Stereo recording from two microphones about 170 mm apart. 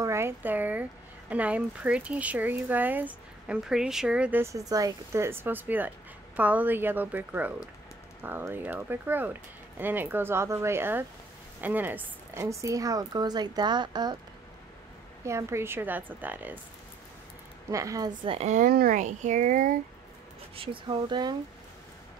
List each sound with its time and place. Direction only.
0.0 s a woman's voice: 15° right (ahead or behind)
15.2 s speech: 15° right (ahead or behind)
17.6 s a woman's voice: 20° right (ahead or behind)
18.3 s speech: 40° right (ahead or behind)
18.7 s speech: 60° right (ahead or behind)
20.5 s a woman's voice: 30° right (ahead or behind)